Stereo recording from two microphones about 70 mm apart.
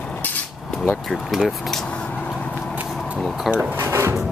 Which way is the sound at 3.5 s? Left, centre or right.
Right.